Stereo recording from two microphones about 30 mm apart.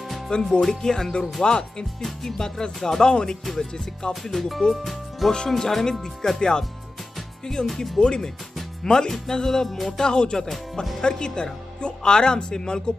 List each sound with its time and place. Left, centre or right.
0.3 s speech: left
0.6 s music: centre
1.4 s speech: left
2.0 s speech: centre
2.3 s speech: left
4.1 s music: centre
5.2 s speech: centre
5.6 s music: centre
7.6 s speech: centre
8.0 s speech: left
9.1 s music: centre
9.8 s speech: left
10.5 s speech: centre
11.0 s speech: left